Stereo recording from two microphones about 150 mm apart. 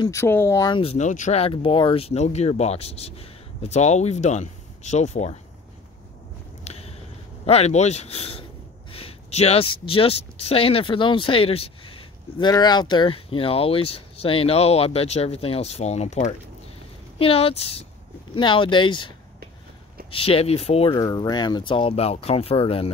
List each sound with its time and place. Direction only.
0.1 s speech: 15° left (ahead or behind); by 0.9 s 30° left (ahead or behind)
0.9 s speech: 55° left (ahead or behind)
6.6 s a sound: 45° left (ahead or behind)
7.4 s speech: 45° left (ahead or behind)
12.4 s speech: 25° left (ahead or behind)
20.9 s speech: 25° left (ahead or behind)